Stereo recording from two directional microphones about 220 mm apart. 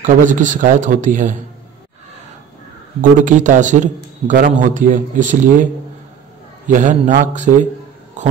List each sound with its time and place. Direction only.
0.0 s a man's voice: 35° right (ahead or behind)
3.0 s a man's voice: 35° right (ahead or behind)
6.7 s a man's voice: 35° right (ahead or behind)